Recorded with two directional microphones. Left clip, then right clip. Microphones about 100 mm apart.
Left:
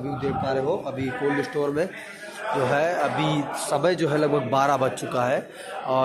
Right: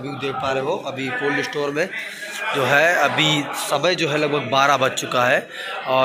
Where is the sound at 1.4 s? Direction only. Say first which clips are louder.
Right 2 dB; 45° left (ahead or behind).